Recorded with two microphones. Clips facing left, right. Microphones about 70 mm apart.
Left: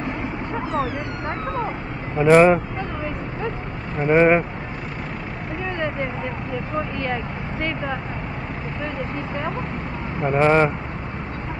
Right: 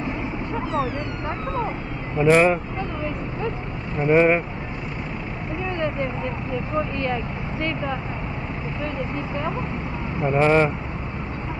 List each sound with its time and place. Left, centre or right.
0.6 s vehicle: centre
0.9 s speech: centre
2.1 s speech: centre
4.1 s speech: left
10.2 s speech: centre